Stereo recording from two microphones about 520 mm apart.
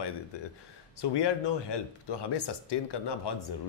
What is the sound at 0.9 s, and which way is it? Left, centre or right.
Speech, left.